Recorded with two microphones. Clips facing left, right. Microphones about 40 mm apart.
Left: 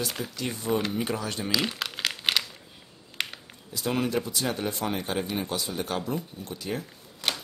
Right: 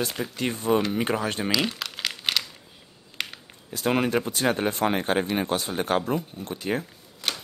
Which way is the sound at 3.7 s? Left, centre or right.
Right.